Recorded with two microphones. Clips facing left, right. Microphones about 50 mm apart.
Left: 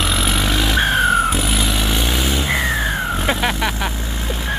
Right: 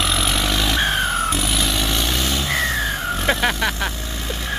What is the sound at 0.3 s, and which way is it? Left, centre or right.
Vehicle, centre.